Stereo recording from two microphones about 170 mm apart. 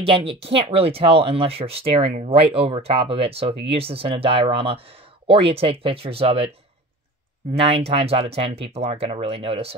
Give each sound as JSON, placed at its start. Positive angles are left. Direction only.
{"t": 0.0, "sound": "speech", "side_deg": -30}
{"t": 7.5, "sound": "speech", "side_deg": -35}